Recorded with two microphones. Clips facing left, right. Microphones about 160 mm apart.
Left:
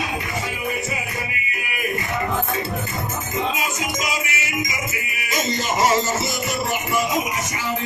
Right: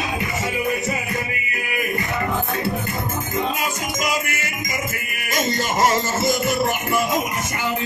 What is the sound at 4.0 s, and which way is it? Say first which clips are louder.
Music: right 2 dB; 55° right (ahead or behind).